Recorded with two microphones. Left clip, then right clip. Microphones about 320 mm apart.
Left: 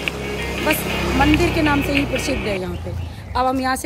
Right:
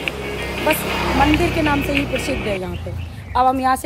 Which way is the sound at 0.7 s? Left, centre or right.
Right.